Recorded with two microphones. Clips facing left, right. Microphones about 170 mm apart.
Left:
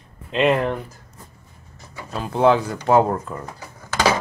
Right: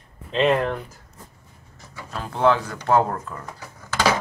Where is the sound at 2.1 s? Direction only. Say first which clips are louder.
Left 3 dB; 15° left (ahead or behind).